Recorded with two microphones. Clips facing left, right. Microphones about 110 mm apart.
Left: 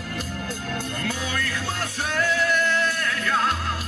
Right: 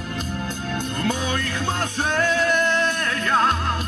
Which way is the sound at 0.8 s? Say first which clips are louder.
Right 7 dB; 20° right (ahead or behind).